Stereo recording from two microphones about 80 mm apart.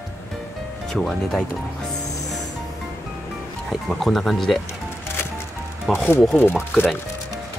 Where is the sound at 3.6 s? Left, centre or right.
Centre.